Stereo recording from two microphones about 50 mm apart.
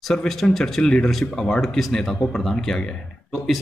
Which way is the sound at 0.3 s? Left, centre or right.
Centre.